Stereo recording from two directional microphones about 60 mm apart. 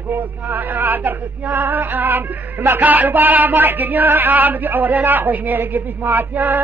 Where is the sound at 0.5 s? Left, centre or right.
Right.